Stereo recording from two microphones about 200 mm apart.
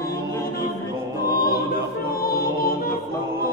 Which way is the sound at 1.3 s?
45° left (ahead or behind).